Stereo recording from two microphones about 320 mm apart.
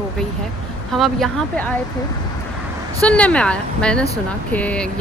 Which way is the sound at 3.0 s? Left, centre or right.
Centre.